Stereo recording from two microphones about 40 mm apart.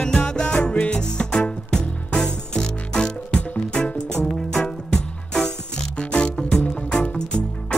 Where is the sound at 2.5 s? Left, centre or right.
Centre.